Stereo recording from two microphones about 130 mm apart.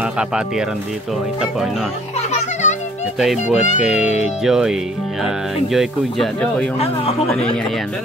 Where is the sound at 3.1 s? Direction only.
Centre (ahead or behind).